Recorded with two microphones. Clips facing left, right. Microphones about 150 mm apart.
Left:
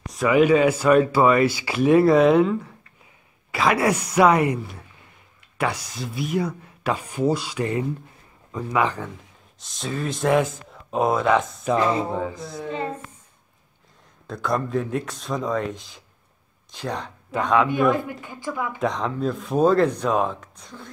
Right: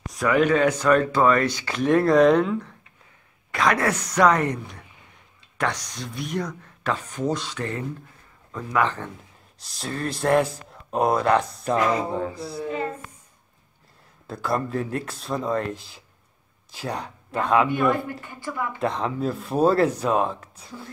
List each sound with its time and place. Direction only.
0.0 s speech: centre (ahead or behind)
9.6 s speech: centre (ahead or behind)
14.2 s speech: 5° right (ahead or behind)
18.2 s speech: 15° left (ahead or behind)
18.8 s speech: 5° right (ahead or behind)